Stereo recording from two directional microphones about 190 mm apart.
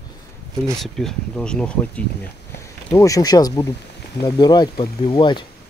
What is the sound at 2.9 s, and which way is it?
Speech, 15° left (ahead or behind).